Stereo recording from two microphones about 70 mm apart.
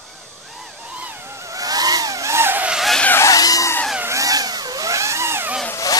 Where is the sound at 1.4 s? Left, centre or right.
Right.